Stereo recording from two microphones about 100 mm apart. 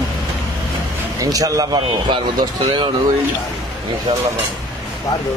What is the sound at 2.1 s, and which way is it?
Speech, 50° right (ahead or behind).